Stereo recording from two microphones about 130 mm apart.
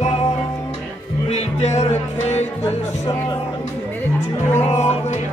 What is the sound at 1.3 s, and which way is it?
Music, 60° left (ahead or behind).